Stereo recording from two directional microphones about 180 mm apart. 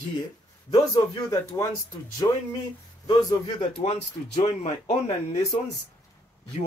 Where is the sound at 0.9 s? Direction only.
20° left (ahead or behind).